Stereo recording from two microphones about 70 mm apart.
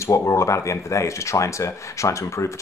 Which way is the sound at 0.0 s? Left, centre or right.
Left.